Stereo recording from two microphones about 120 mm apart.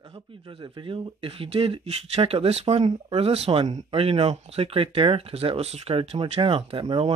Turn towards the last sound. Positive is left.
turn(degrees=-45)  # may be behind; listen again after turning